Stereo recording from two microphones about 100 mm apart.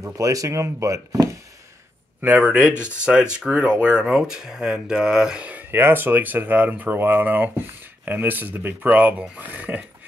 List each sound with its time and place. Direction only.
0.0 s speech: 35° right (ahead or behind)
2.2 s speech: 15° right (ahead or behind)